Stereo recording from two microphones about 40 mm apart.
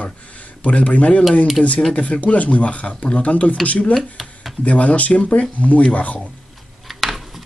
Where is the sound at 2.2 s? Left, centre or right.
Left.